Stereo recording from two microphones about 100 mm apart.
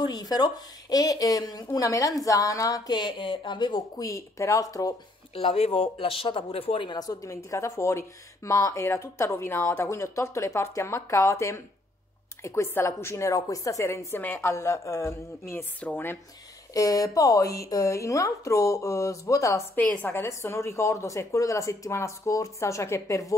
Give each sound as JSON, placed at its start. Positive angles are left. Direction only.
{"t": 0.0, "sound": "speech", "side_deg": 40}
{"t": 4.1, "sound": "speech", "side_deg": 30}
{"t": 5.3, "sound": "speech", "side_deg": 75}
{"t": 6.9, "sound": "a woman's voice", "side_deg": 40}
{"t": 16.7, "sound": "a woman's voice", "side_deg": 35}